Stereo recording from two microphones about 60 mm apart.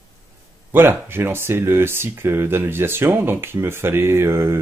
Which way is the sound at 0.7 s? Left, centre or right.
Right.